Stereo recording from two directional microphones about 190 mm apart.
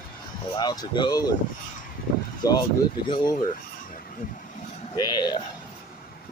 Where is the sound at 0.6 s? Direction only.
20° left (ahead or behind).